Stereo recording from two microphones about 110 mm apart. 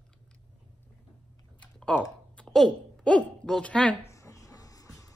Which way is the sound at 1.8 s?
10° left (ahead or behind).